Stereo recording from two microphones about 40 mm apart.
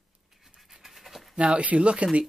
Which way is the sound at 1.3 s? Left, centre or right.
Right.